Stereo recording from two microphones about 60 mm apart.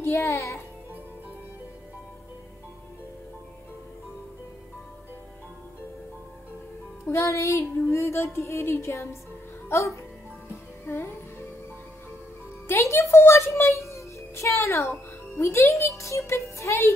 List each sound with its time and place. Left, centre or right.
0.0 s speech: left
7.1 s speech: left
9.7 s speech: left
10.9 s music: left
12.6 s a child's voice: left
16.0 s music: left